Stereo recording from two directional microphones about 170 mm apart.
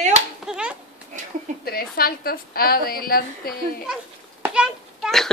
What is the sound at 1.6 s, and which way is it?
A woman's voice, 65° left (ahead or behind).